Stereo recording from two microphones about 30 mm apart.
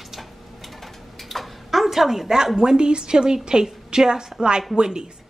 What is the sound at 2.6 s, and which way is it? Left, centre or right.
A woman's voice, right.